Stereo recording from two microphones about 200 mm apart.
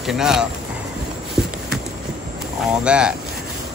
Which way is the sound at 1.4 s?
5° right (ahead or behind).